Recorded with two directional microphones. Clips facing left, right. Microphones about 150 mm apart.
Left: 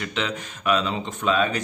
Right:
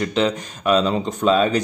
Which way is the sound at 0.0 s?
35° right (ahead or behind).